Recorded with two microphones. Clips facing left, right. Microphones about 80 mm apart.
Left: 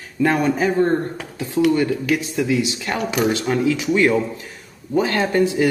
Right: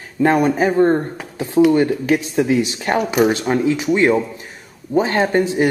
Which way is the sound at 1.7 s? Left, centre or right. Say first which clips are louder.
Right 3 dB; right.